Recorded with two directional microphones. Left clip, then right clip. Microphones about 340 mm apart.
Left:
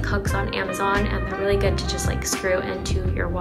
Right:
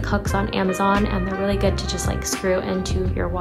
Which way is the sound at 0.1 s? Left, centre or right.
Centre.